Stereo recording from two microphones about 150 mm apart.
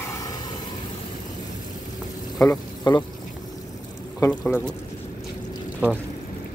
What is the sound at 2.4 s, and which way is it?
Speech, 25° left (ahead or behind).